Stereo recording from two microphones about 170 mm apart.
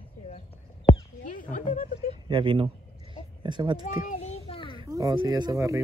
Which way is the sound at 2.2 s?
30° right (ahead or behind).